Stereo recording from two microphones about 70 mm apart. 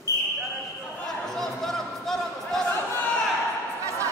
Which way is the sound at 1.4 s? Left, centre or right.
Centre.